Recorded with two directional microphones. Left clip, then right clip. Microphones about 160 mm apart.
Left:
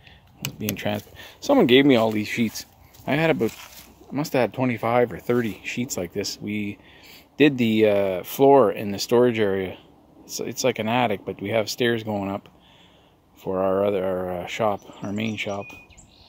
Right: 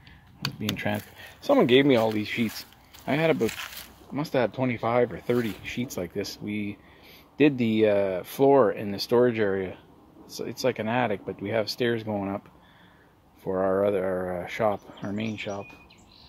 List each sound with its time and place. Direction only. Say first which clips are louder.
0.6 s speech: left 3 dB; 20° left (ahead or behind)
15.1 s speech: left 5 dB; 35° left (ahead or behind)